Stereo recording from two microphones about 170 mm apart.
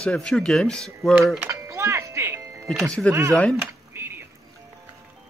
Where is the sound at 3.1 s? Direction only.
15° right (ahead or behind).